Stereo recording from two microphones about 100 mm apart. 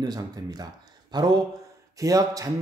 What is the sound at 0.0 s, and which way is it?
Speech, 40° right (ahead or behind).